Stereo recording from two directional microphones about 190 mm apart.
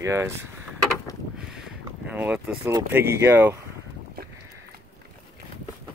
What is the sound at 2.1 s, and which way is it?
Speech, 5° right (ahead or behind).